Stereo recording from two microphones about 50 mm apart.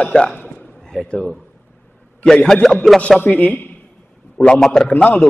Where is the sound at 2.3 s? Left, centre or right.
Centre.